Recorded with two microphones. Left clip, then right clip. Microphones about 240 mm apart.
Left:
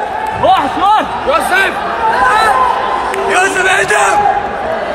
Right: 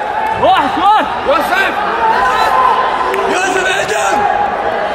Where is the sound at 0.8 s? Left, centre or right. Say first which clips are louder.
Even; left.